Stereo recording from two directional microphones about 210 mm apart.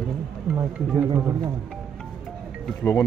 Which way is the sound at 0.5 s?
15° right (ahead or behind).